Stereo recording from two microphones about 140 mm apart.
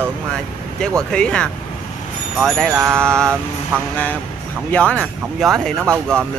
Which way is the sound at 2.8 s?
20° right (ahead or behind).